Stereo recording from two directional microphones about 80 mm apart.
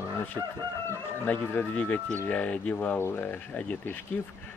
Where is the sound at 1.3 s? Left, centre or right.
Centre.